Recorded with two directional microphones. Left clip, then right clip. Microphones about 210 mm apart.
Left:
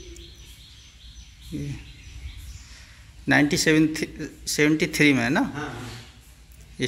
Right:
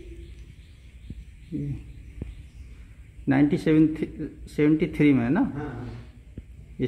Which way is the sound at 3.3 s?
5° left (ahead or behind).